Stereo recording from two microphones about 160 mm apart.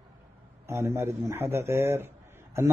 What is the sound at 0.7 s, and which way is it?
A man's voice, 15° right (ahead or behind).